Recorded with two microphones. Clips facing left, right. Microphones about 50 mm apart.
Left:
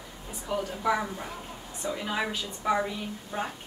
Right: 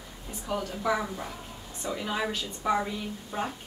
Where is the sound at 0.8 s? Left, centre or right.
Centre.